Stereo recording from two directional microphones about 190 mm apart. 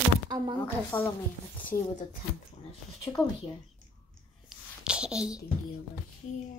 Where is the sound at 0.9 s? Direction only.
10° left (ahead or behind).